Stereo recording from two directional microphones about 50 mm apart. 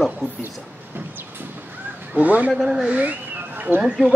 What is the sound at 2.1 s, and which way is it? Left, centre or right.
Speech, right.